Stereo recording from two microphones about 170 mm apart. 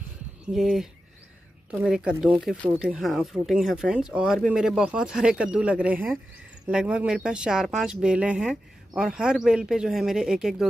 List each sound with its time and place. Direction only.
0.5 s speech: centre (ahead or behind)